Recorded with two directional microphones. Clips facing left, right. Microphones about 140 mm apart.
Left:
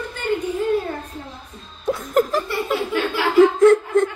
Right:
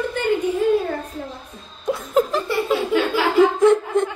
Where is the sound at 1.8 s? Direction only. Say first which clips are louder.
Even; centre (ahead or behind).